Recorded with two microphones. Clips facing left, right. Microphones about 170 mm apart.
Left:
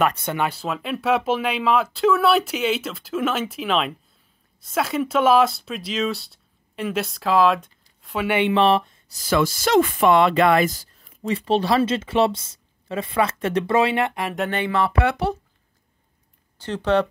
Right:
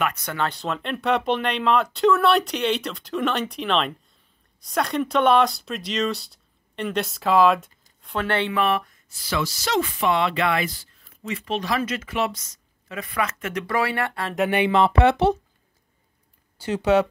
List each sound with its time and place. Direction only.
0.0 s speech: 25° left (ahead or behind)
0.4 s speech: 5° left (ahead or behind)
8.5 s speech: 30° left (ahead or behind)
9.1 s speech: 45° left (ahead or behind); by 14.3 s 20° left (ahead or behind)
14.5 s speech: 20° right (ahead or behind)
16.5 s speech: 10° right (ahead or behind)